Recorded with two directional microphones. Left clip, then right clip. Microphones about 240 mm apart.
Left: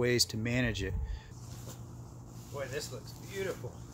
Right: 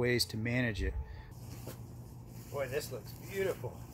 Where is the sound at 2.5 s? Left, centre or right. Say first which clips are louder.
Right 2 dB; centre.